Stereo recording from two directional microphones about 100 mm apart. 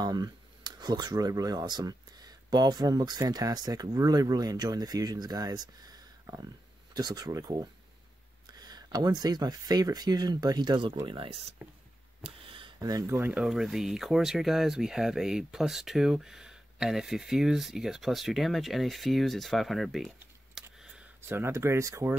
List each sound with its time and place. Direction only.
0.0 s speech: 40° right (ahead or behind)
11.1 s speech: 70° right (ahead or behind)
12.2 s a sound: 60° right (ahead or behind)
13.0 s speech: 25° right (ahead or behind)
13.3 s speech: 5° right (ahead or behind)
20.5 s a sound: 5° right (ahead or behind)
21.3 s speech: 25° right (ahead or behind)